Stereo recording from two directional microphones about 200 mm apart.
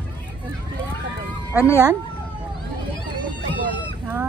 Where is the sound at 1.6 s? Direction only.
10° left (ahead or behind).